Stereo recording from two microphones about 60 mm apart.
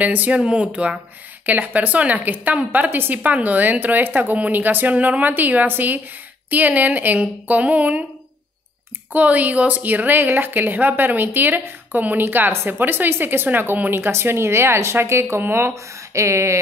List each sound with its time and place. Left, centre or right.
0.0 s a woman's voice: right
9.1 s a woman's voice: right
15.7 s speech: right